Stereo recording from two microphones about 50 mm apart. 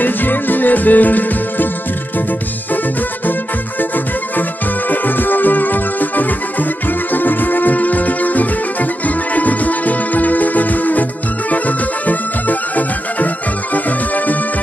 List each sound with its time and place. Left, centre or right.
0.0 s music: left
4.4 s music: left